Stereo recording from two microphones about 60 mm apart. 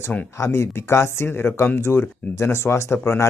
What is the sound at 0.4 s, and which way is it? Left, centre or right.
Speech, left.